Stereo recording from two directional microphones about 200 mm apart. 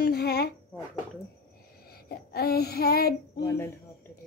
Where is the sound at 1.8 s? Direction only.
50° left (ahead or behind).